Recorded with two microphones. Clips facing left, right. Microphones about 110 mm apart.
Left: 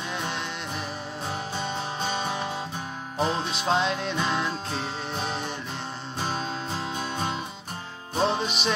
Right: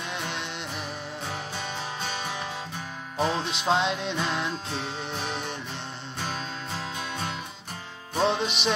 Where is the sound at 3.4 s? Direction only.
20° right (ahead or behind).